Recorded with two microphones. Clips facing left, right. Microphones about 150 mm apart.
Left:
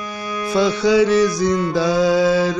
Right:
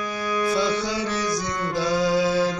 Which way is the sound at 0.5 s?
90° left.